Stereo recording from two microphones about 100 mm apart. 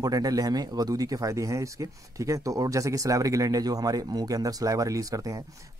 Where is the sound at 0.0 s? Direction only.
40° right (ahead or behind).